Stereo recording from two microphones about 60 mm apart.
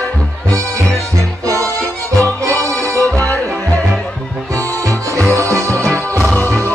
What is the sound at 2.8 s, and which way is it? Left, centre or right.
Music, right.